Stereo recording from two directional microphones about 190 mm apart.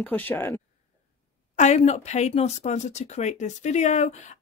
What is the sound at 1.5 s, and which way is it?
Speech, 40° left (ahead or behind).